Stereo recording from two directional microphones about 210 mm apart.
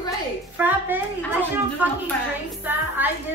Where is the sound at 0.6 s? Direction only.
10° right (ahead or behind).